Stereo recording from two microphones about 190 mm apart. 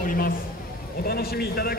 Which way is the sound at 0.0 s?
50° left (ahead or behind).